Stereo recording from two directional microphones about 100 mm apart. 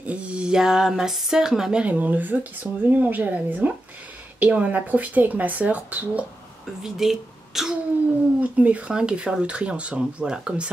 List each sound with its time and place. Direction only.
0.0 s speech: 15° right (ahead or behind)
6.8 s a child's voice: 5° right (ahead or behind)
8.4 s speech: 15° right (ahead or behind)